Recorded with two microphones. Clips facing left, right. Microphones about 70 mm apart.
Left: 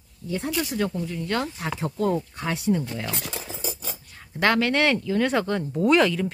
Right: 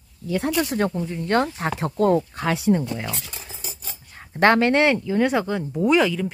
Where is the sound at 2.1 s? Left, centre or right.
Right.